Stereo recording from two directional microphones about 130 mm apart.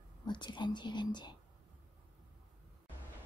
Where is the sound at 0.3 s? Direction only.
35° left (ahead or behind).